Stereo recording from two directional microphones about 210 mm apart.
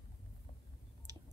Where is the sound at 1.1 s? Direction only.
20° right (ahead or behind).